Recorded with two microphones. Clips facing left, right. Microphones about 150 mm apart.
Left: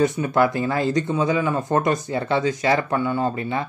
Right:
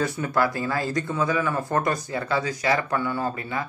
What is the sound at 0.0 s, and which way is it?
Speech, 20° left (ahead or behind).